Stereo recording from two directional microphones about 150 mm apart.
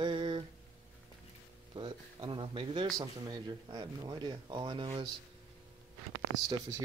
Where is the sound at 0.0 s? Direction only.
35° right (ahead or behind).